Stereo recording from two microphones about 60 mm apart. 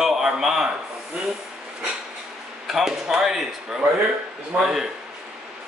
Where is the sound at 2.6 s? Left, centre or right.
Centre.